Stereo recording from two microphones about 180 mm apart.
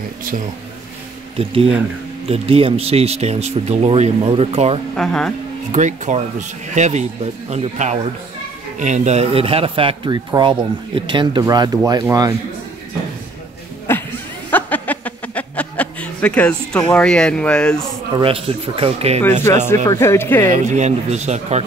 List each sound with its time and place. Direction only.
1.4 s speech: 30° right (ahead or behind)
4.9 s speech: 5° left (ahead or behind)
5.7 s speech: 40° right (ahead or behind); by 12.4 s 20° right (ahead or behind)
13.9 s a sound: 10° left (ahead or behind)
18.1 s speech: 30° right (ahead or behind)
19.7 s speech: 15° left (ahead or behind)
20.4 s speech: 45° right (ahead or behind)